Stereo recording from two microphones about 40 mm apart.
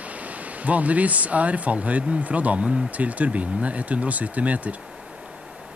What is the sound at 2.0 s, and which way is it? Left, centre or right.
Speech, right.